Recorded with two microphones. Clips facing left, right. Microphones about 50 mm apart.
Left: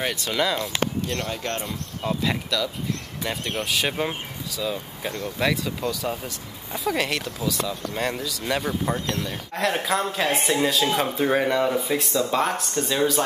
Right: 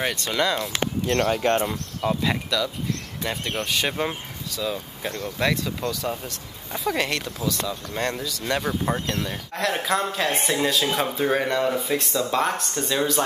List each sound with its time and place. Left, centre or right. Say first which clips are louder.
0.0 s speech: right 1 dB; centre
1.0 s speech: right 6 dB; right
1.3 s speech: right 8 dB; right
1.7 s speech: right 2 dB; centre